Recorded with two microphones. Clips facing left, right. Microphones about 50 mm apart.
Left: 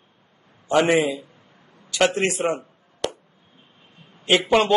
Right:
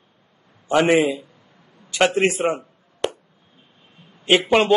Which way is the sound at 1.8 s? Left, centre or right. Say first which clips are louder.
Right 1 dB; right.